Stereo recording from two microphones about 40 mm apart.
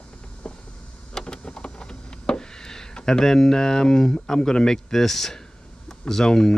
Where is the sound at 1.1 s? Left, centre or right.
Centre.